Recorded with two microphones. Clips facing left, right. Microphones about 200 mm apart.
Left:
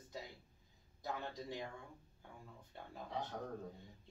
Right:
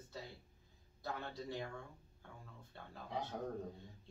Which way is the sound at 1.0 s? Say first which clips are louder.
Even; 15° left (ahead or behind).